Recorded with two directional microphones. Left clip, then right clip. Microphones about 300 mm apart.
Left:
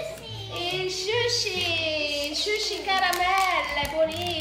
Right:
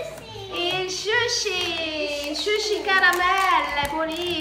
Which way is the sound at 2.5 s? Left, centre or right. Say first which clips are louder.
Right 7 dB; centre.